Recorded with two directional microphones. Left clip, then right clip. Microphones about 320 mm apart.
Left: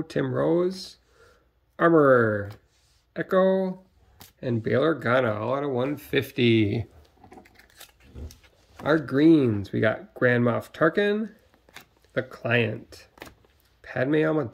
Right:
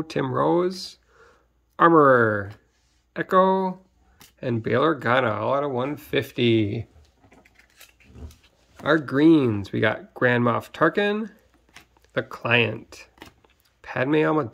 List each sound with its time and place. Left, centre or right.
0.0 s speech: centre
7.2 s a sound: centre
8.8 s speech: centre